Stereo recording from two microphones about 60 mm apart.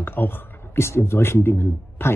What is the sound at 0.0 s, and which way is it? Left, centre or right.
Speech, left.